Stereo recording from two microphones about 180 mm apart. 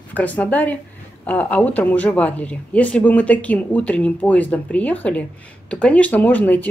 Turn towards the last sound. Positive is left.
turn(degrees=10)  # may be behind; listen again after turning